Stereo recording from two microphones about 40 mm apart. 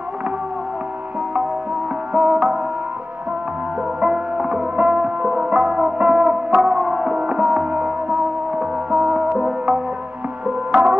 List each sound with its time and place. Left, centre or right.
2.1 s music: right
4.0 s music: right
10.4 s music: right